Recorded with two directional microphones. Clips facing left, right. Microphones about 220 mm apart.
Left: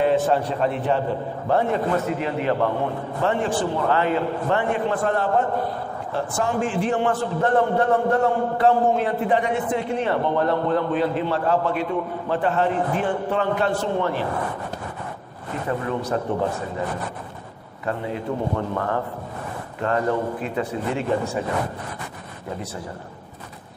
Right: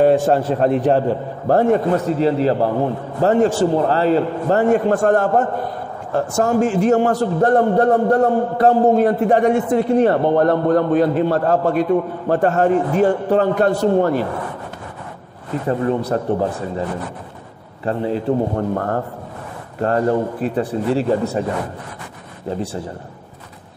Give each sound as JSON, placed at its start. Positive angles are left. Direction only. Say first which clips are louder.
{"t": 0.0, "sound": "a sound", "louder": "right 6 dB", "side_deg": -45}
{"t": 0.5, "sound": "a man's voice", "louder": "right 7 dB", "side_deg": -45}
{"t": 16.1, "sound": "speech", "louder": "right 4 dB", "side_deg": -40}
{"t": 17.8, "sound": "speech", "louder": "right 7 dB", "side_deg": -35}